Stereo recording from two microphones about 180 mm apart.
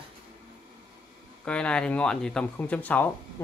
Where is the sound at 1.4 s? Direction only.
5° left (ahead or behind).